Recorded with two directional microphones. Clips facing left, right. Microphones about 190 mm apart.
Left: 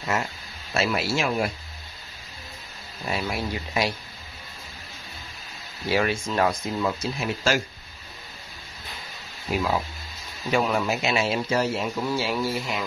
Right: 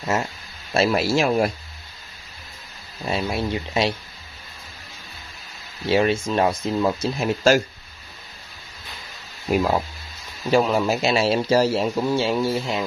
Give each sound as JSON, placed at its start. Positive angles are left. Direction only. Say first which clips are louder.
{"t": 0.0, "sound": "speech", "louder": "right 3 dB", "side_deg": -25}
{"t": 0.7, "sound": "speech", "louder": "right 6 dB", "side_deg": -40}
{"t": 3.1, "sound": "speech", "louder": "right 4 dB", "side_deg": -25}
{"t": 5.9, "sound": "speech", "louder": "right 5 dB", "side_deg": -25}
{"t": 7.2, "sound": "speech", "louder": "right 9 dB", "side_deg": -40}
{"t": 9.5, "sound": "speech", "louder": "right 5 dB", "side_deg": -45}
{"t": 10.5, "sound": "speech", "louder": "right 5 dB", "side_deg": -35}